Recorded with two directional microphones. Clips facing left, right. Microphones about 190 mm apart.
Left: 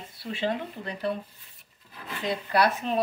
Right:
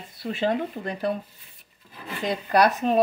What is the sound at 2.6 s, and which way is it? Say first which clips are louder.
Speech: right 5 dB; 45° right (ahead or behind).